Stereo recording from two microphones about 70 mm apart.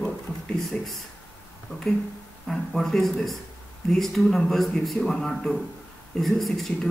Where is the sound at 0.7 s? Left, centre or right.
Centre.